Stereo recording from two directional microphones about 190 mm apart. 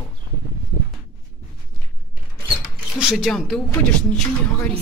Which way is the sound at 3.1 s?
Centre (ahead or behind).